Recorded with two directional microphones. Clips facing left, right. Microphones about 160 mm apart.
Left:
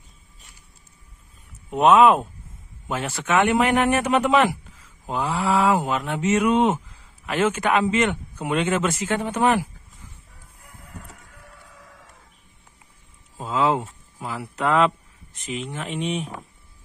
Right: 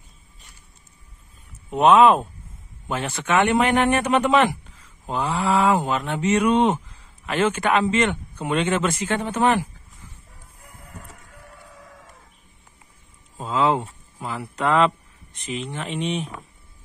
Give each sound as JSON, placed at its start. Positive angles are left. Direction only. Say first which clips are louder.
{"t": 1.7, "sound": "speech", "louder": "right 1 dB", "side_deg": 0}
{"t": 13.4, "sound": "speech", "louder": "right 1 dB", "side_deg": 5}